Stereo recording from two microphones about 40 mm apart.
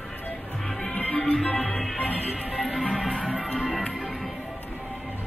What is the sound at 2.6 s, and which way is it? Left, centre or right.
Music, centre.